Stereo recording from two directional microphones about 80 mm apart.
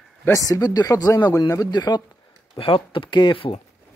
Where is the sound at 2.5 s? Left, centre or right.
Left.